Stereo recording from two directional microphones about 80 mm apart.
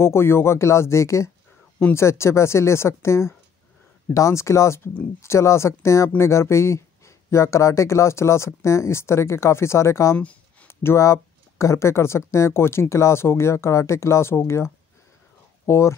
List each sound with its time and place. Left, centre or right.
0.0 s speech: left
10.1 s a sound: centre
10.7 s speech: left